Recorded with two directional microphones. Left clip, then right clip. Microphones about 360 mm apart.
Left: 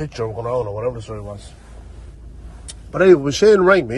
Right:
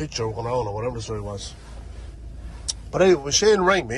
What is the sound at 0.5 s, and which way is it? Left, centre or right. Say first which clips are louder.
Speech: left 5 dB; centre.